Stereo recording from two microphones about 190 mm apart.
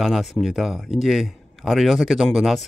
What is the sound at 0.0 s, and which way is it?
Speech, centre (ahead or behind).